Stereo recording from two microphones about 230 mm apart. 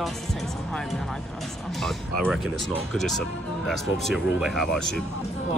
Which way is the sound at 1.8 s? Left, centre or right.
Centre.